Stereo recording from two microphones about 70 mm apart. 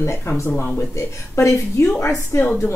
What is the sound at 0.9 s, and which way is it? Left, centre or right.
Speech, left.